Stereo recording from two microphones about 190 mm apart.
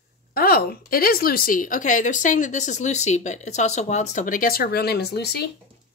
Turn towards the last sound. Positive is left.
turn(degrees=60)  # may be behind; listen again after turning